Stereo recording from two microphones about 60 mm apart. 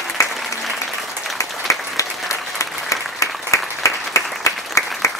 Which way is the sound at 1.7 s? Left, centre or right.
Left.